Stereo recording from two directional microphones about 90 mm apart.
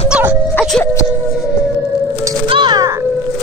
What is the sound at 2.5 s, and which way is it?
Music, 60° right (ahead or behind).